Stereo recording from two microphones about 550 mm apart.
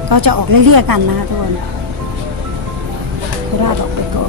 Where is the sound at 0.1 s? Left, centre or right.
Right.